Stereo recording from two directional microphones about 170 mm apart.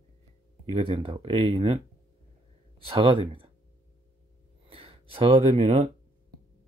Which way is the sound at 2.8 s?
30° right (ahead or behind).